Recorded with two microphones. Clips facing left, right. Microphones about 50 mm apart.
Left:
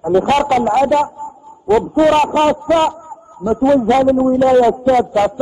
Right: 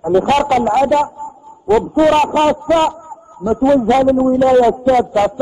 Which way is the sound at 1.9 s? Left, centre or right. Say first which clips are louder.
Even; centre.